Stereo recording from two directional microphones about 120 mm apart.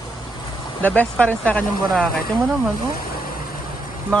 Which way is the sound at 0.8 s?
10° left (ahead or behind).